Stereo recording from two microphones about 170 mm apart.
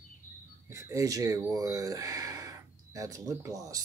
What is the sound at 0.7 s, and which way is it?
Speech, 20° right (ahead or behind).